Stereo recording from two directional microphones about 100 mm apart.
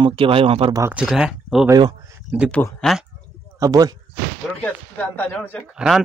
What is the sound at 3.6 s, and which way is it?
Speech, 40° right (ahead or behind).